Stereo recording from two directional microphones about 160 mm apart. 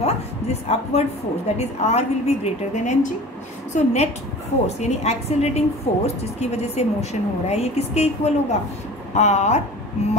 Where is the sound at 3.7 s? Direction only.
45° left (ahead or behind).